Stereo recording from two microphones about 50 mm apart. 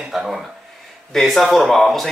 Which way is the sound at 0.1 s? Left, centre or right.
Centre.